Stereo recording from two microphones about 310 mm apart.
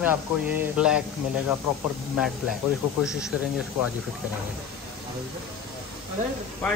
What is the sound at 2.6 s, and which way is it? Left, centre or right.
Speech, centre.